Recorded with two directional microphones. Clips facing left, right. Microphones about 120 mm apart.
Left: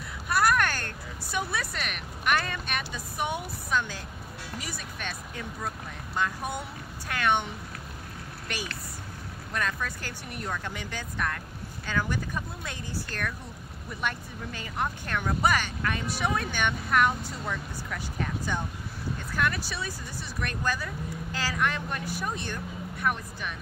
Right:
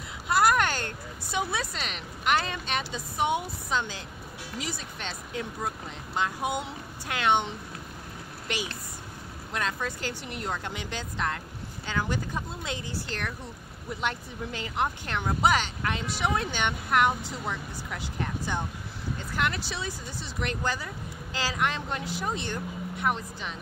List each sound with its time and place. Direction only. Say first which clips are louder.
0.3 s speech: right 2 dB; 20° right (ahead or behind)
6.1 s speech: right 2 dB; 20° right (ahead or behind)
14.8 s speech: right 1 dB; 20° right (ahead or behind)
20.3 s speech: even; 20° right (ahead or behind)